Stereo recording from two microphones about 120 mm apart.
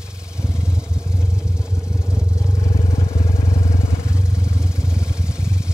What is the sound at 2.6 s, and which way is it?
Vehicle, 65° left (ahead or behind).